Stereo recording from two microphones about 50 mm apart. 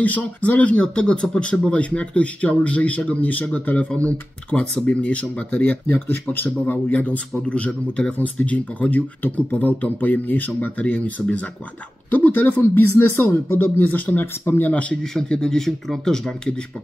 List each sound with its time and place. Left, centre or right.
0.0 s speech: left
0.9 s speech: centre
5.9 s speech: left
14.2 s speech: left
14.7 s speech: left
15.1 s speech: centre